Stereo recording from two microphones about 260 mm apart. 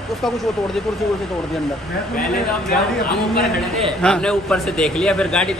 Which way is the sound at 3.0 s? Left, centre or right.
Centre.